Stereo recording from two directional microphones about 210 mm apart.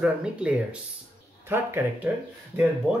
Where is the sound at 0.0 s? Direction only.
5° right (ahead or behind).